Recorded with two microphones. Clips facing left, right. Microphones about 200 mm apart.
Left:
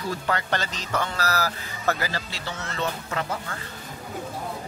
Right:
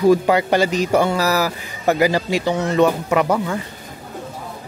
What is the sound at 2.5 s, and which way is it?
Speech, 65° right (ahead or behind).